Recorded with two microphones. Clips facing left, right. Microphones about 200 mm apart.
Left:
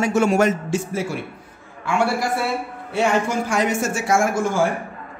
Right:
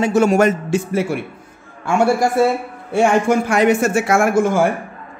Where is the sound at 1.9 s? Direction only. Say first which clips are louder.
Right 5 dB; 45° right (ahead or behind).